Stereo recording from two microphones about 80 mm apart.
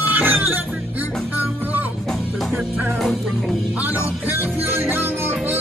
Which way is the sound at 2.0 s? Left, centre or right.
Centre.